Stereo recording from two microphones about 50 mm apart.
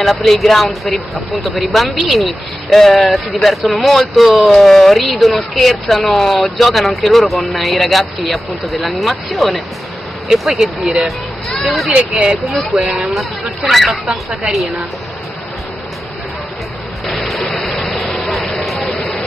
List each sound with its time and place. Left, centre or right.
0.0 s speech: centre
11.9 s speech: right
12.5 s speech: centre
17.0 s a sound: centre
17.5 s a sound: centre
18.2 s vehicle: centre